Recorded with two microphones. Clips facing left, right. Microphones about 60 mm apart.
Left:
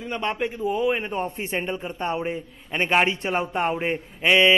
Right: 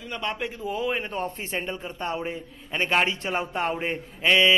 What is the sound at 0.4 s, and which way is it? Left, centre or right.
Speech, centre.